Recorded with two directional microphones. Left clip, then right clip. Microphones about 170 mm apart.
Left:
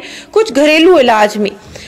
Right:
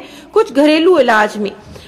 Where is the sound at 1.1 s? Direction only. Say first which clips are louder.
Left 2 dB; 35° left (ahead or behind).